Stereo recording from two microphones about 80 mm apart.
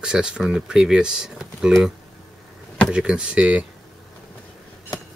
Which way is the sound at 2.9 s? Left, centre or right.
Centre.